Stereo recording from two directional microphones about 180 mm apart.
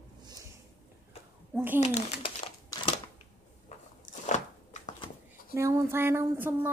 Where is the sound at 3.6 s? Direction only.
40° left (ahead or behind).